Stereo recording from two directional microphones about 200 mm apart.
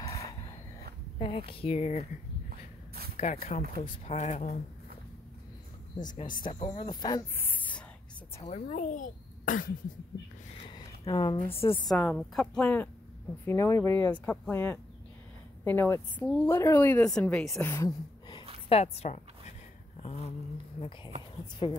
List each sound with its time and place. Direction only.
1.1 s speech: 25° left (ahead or behind)
3.2 s speech: 35° left (ahead or behind)
6.2 s speech: 45° left (ahead or behind)
6.5 s speech: 30° left (ahead or behind)
7.4 s a sound: 10° left (ahead or behind)
8.4 s speech: 35° left (ahead or behind)
10.7 s a sound: 20° left (ahead or behind)
11.4 s a woman's voice: 10° left (ahead or behind)
18.7 s a woman's voice: 30° left (ahead or behind)
21.6 s speech: 25° left (ahead or behind)